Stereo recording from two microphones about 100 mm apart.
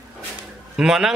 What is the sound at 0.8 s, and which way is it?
Speech, 5° right (ahead or behind).